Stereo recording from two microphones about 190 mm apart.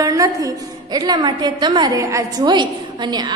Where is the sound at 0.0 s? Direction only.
15° right (ahead or behind).